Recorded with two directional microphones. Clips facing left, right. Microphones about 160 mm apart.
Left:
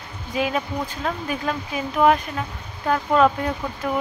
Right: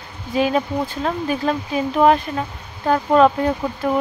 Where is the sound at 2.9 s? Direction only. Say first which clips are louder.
Right 4 dB; 35° right (ahead or behind).